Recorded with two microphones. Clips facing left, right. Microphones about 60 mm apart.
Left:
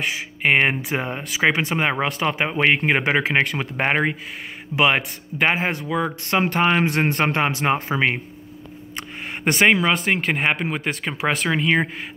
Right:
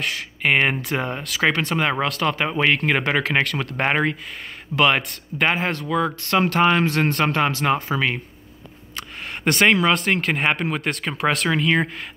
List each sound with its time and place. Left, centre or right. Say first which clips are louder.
0.0 s speech: left 1 dB; centre
6.8 s speech: even; left
8.9 s speech: even; centre